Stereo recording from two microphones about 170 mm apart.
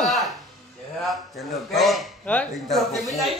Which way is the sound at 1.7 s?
Centre (ahead or behind).